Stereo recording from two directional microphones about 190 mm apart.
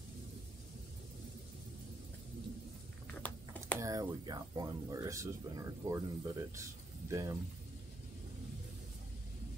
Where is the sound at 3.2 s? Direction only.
10° left (ahead or behind).